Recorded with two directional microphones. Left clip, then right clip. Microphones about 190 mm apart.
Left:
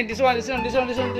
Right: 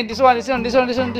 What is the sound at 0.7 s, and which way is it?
Speech, 35° right (ahead or behind).